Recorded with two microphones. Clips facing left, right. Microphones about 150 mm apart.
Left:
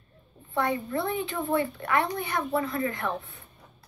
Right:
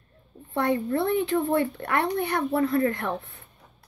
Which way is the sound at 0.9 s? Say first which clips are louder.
Right 6 dB; 65° right (ahead or behind).